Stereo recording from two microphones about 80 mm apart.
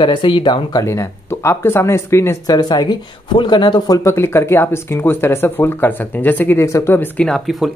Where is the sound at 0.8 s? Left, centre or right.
Left.